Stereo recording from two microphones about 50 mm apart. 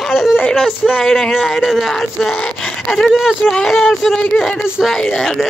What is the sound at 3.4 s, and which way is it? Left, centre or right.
Speech, left.